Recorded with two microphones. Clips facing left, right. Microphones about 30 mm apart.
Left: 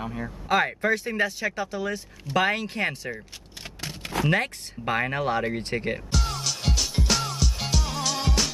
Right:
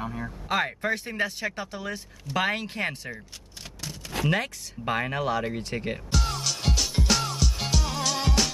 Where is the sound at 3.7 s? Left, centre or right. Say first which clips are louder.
Left 3 dB; left.